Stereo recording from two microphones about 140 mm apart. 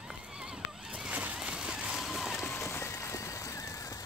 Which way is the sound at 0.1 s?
5° right (ahead or behind).